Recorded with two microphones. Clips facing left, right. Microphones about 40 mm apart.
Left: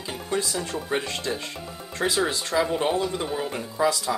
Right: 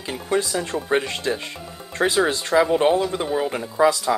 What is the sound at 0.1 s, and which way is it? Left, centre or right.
Speech, centre.